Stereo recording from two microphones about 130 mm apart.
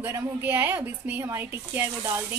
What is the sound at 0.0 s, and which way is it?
A woman's voice, 15° right (ahead or behind).